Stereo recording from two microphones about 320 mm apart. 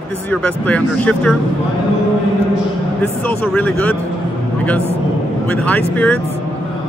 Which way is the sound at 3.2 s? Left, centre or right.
Centre.